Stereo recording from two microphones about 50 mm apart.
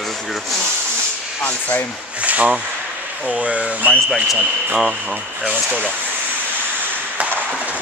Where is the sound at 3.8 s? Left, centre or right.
Right.